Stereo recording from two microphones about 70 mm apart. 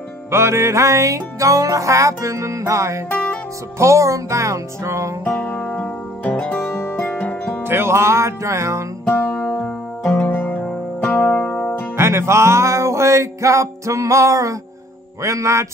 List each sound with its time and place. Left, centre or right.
0.3 s music: right
5.2 s music: left
6.7 s music: left
7.0 s music: left
7.6 s music: right
9.1 s music: left
12.0 s music: right